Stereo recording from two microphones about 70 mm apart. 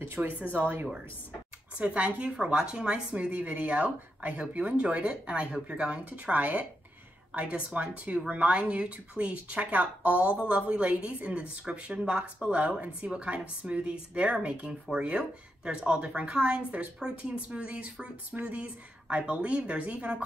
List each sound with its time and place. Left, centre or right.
0.0 s a woman's voice: right